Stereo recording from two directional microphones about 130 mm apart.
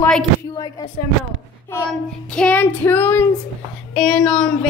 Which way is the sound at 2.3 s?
10° left (ahead or behind).